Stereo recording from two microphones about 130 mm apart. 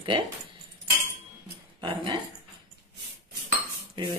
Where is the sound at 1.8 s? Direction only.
40° right (ahead or behind).